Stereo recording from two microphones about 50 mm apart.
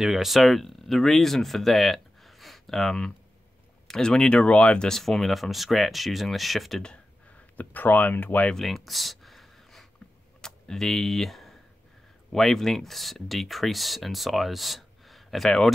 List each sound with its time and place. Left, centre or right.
0.0 s speech: centre
4.9 s speech: centre
7.5 s speech: left
8.6 s a sound: centre
10.4 s speech: centre